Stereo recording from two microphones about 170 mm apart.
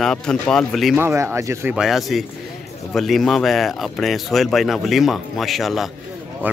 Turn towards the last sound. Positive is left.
turn(degrees=0)  # may be behind; listen again after turning